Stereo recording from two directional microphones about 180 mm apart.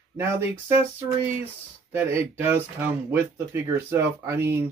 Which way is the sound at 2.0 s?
15° right (ahead or behind).